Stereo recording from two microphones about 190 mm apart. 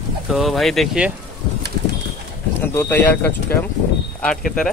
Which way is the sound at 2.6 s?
10° left (ahead or behind).